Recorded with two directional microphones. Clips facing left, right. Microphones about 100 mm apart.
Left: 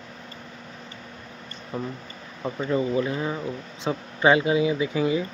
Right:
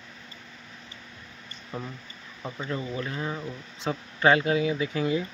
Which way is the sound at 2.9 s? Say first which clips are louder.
Left 6 dB; 10° left (ahead or behind).